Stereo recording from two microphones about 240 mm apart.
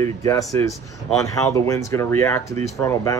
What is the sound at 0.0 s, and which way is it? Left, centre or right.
Speech, centre.